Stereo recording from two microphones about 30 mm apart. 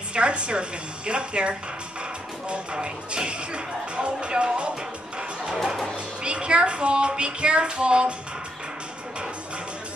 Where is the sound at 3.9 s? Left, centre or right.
Right.